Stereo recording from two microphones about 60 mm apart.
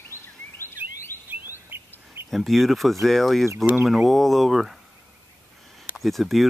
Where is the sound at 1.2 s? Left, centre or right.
Right.